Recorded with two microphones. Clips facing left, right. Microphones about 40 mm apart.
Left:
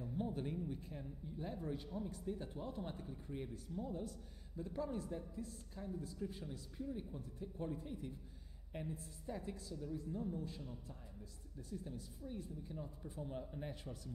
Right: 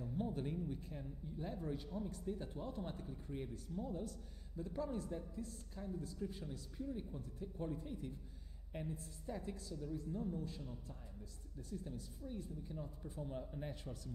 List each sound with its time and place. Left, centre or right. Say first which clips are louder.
0.0 s speech: even; centre